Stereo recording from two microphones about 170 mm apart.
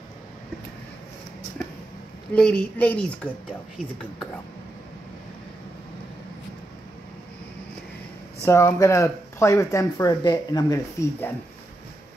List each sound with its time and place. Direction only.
2.3 s speech: 5° left (ahead or behind)
8.5 s speech: 15° left (ahead or behind)